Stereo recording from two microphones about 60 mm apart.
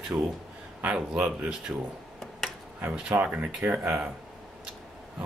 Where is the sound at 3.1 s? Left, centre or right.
Right.